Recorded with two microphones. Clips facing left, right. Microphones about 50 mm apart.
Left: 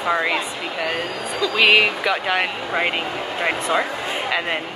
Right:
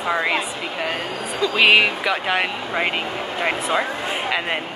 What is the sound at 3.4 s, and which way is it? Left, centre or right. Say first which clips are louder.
Speech: left 1 dB; left.